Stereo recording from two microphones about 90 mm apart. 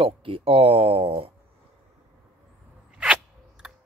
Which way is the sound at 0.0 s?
90° right.